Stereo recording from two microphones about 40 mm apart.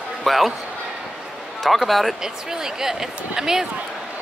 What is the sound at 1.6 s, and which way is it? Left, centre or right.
Speech, centre.